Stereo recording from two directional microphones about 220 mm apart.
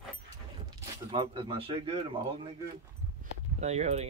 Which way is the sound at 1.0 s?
25° right (ahead or behind).